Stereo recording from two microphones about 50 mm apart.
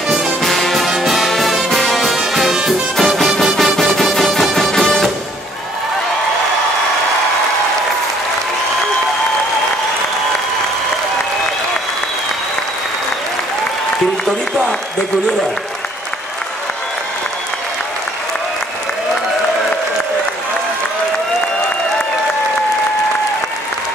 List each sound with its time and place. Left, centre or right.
0.4 s brass instrument: centre
3.5 s music: centre